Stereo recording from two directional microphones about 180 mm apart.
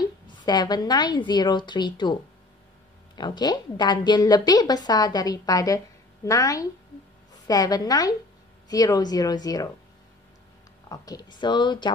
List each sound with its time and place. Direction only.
0.5 s a woman's voice: 25° left (ahead or behind)
3.2 s a woman's voice: 25° left (ahead or behind)
10.9 s a woman's voice: 20° left (ahead or behind)